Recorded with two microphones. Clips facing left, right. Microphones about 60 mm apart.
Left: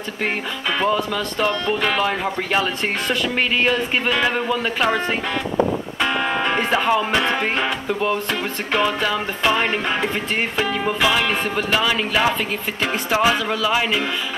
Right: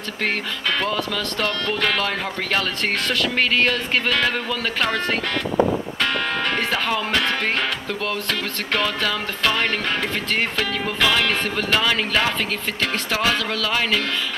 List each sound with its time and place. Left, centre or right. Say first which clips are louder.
0.7 s speech: left 6 dB; centre
5.9 s music: left 2 dB; centre
8.0 s speech: left 4 dB; centre